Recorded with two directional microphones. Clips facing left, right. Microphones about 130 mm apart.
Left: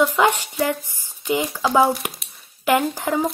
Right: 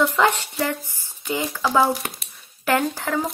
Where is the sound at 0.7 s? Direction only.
15° left (ahead or behind).